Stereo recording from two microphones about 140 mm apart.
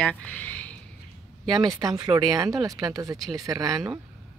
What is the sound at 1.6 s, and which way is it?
Speech, 25° right (ahead or behind).